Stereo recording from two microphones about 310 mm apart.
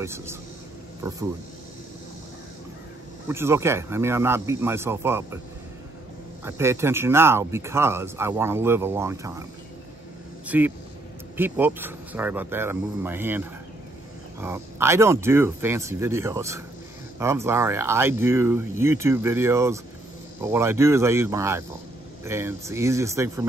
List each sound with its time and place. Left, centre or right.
0.0 s speech: centre
3.3 s speech: centre
6.4 s speech: centre
10.4 s speech: centre